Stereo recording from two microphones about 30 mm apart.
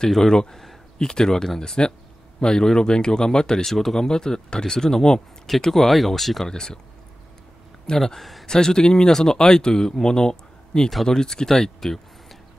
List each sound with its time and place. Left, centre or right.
0.2 s speech: left
1.8 s speech: left
2.4 s speech: left
3.6 s speech: centre
5.7 s speech: centre
6.4 s speech: left
7.9 s speech: left
8.2 s a man's voice: centre
8.5 s speech: left